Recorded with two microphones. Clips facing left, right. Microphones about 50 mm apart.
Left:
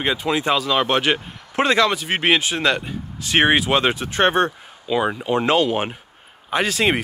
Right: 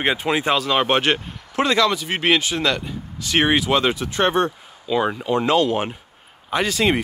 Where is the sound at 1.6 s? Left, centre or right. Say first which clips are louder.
Left 1 dB; left.